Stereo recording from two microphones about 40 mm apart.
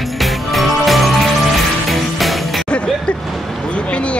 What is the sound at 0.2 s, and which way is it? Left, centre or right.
Music, centre.